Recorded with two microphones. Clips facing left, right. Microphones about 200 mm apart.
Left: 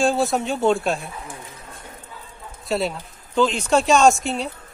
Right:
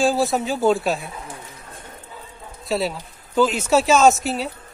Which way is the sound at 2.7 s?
Centre (ahead or behind).